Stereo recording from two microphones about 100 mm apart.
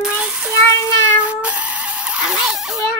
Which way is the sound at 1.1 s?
15° right (ahead or behind).